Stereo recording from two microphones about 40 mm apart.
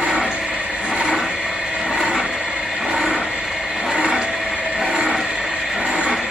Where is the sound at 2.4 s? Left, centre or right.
Right.